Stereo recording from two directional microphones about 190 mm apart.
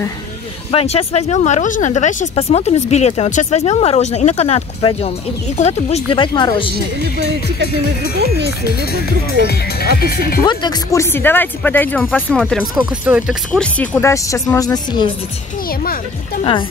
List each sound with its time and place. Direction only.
0.7 s speech: 30° left (ahead or behind)
9.4 s speech: 55° left (ahead or behind)
10.4 s speech: 25° left (ahead or behind); by 12.2 s 10° left (ahead or behind)
12.3 s speech: 5° right (ahead or behind)
13.5 s speech: 5° left (ahead or behind)